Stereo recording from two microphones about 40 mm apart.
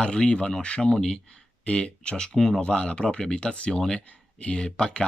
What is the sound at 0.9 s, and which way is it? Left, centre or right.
Speech, centre.